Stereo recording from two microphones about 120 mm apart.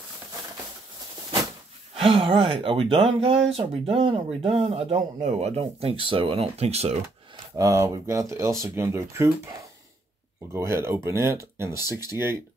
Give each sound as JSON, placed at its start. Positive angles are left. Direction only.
{"t": 2.0, "sound": "speech", "side_deg": -50}
{"t": 7.5, "sound": "speech", "side_deg": -25}